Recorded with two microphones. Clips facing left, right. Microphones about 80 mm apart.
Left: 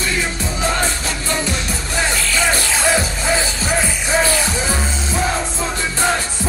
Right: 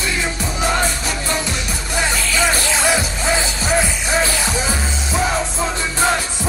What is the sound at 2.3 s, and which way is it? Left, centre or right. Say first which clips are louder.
Music: right 1 dB; centre.